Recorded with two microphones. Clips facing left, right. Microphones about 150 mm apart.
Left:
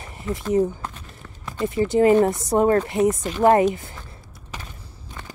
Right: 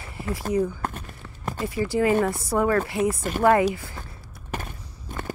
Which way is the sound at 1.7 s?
25° left (ahead or behind).